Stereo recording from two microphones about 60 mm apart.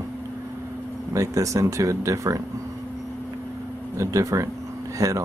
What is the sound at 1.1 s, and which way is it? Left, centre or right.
Speech, right.